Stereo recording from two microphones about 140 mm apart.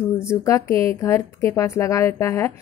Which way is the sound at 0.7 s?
40° right (ahead or behind).